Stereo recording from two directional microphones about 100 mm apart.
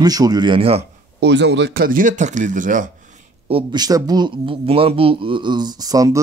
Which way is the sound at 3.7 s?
40° right (ahead or behind).